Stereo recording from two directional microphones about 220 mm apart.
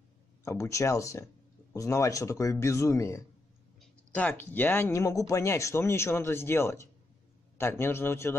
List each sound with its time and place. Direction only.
0.5 s speech: 15° left (ahead or behind)